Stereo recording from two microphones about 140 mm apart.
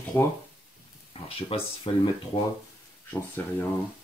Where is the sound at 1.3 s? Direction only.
40° left (ahead or behind).